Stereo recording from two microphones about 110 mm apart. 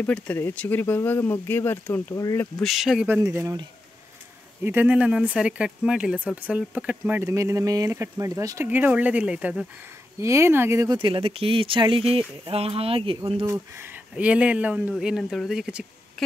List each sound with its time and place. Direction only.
0.0 s speech: 15° left (ahead or behind)
2.1 s speech: 30° left (ahead or behind)
2.6 s speech: centre (ahead or behind)
3.2 s speech: 25° right (ahead or behind)
4.6 s speech: 15° right (ahead or behind)
7.2 s speech: 30° right (ahead or behind)
8.6 s speech: 15° right (ahead or behind)
10.2 s speech: 25° right (ahead or behind)
11.0 s speech: 55° right (ahead or behind)
14.1 s speech: 10° right (ahead or behind)